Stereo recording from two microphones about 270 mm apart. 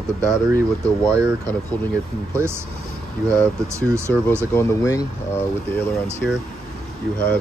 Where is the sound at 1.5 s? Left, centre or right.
Centre.